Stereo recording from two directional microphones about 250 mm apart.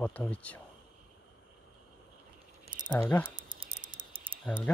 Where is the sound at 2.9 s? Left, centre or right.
Centre.